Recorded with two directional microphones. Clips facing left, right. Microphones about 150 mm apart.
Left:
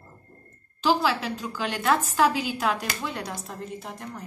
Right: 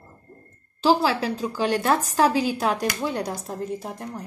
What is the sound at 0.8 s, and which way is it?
A woman's voice, 35° right (ahead or behind).